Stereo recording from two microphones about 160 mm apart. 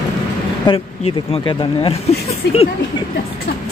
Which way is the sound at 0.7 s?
35° left (ahead or behind).